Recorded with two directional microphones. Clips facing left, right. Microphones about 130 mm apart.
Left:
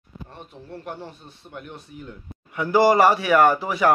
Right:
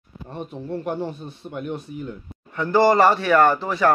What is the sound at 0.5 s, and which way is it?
A man's voice, 20° right (ahead or behind).